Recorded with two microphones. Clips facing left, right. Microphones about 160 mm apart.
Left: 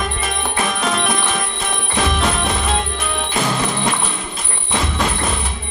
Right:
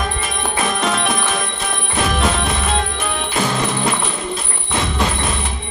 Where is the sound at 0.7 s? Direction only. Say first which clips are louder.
Right 1 dB; centre (ahead or behind).